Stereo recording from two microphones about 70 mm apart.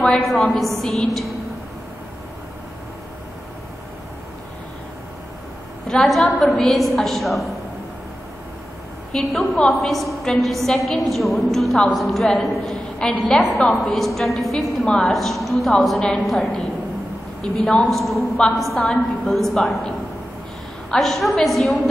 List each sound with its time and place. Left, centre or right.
0.2 s a woman's voice: centre
5.9 s a woman's voice: centre
9.1 s a woman's voice: centre
14.9 s a woman's voice: centre
15.1 s a woman's voice: centre
20.9 s a woman's voice: centre